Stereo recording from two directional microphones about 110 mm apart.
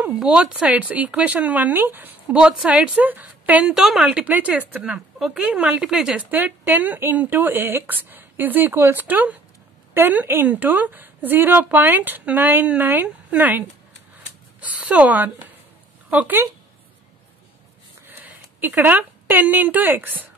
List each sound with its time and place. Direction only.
0.1 s speech: 5° right (ahead or behind)
18.0 s speech: 15° right (ahead or behind)